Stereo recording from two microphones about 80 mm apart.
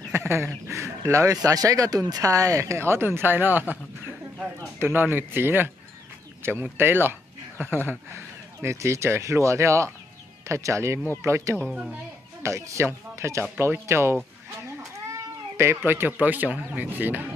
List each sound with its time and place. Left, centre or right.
0.1 s chicken: right
0.7 s speech: right
4.8 s speech: right
8.1 s speech: right
15.5 s speech: right